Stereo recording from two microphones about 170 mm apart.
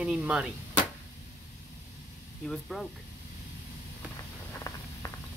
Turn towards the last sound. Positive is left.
turn(degrees=20)  # may be behind; listen again after turning